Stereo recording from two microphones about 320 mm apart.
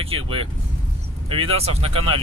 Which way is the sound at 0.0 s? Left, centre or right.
Centre.